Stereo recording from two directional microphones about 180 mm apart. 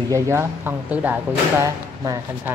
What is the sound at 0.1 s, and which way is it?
Speech, 15° right (ahead or behind).